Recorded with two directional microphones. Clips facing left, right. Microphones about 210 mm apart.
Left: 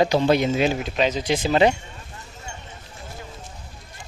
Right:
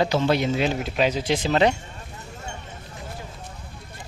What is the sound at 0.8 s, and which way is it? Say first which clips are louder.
Speech: even; 5° right (ahead or behind).